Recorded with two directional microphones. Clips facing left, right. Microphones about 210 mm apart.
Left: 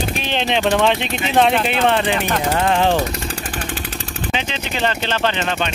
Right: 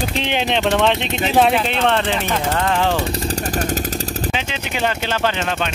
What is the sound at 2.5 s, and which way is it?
Speech, 20° left (ahead or behind).